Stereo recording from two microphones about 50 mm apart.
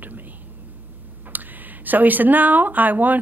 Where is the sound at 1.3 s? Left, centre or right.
Right.